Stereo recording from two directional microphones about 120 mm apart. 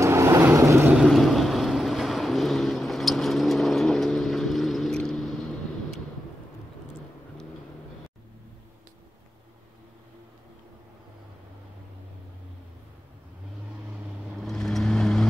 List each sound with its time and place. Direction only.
0.0 s vehicle: 25° right (ahead or behind)
0.9 s vehicle: centre (ahead or behind)
14.4 s vehicle: centre (ahead or behind)